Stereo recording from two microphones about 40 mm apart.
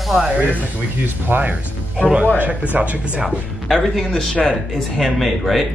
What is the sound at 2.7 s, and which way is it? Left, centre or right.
Speech, right.